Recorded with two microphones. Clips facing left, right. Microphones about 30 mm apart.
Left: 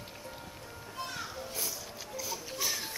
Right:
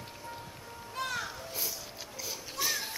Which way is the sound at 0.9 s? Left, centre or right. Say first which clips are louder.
Right 5 dB; right.